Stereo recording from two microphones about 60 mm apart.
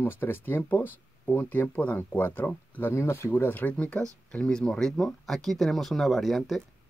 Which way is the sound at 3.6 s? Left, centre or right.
Left.